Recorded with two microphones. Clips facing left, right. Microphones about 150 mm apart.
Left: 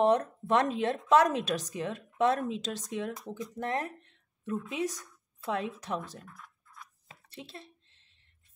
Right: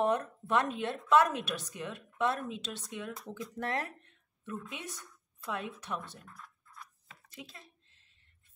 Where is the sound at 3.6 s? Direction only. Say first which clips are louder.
Left 2 dB; 20° left (ahead or behind).